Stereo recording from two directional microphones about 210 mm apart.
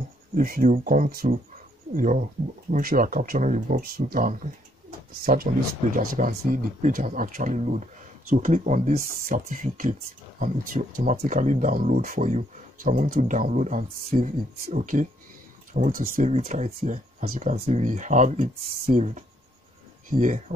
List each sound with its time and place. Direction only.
0.3 s speech: 40° right (ahead or behind)